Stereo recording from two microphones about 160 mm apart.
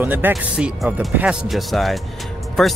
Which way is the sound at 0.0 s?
10° right (ahead or behind).